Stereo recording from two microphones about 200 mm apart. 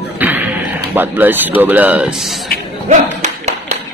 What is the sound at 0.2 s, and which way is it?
Music, 10° right (ahead or behind).